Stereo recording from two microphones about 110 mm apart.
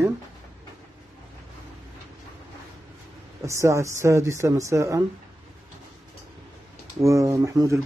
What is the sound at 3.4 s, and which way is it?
Speech, 30° right (ahead or behind).